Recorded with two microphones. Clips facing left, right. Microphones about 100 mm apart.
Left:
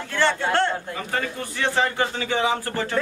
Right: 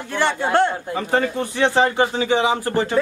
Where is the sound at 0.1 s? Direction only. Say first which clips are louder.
Right 3 dB; 15° right (ahead or behind).